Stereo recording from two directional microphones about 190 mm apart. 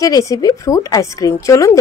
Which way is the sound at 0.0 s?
15° left (ahead or behind).